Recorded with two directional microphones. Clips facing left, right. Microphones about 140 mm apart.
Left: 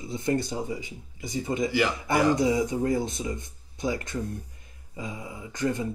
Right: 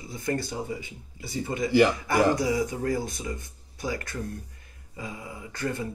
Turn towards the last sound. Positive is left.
turn(degrees=20)  # may be behind; listen again after turning